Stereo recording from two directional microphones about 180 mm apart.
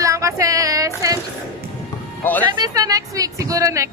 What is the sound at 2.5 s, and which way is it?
Speech, 20° right (ahead or behind).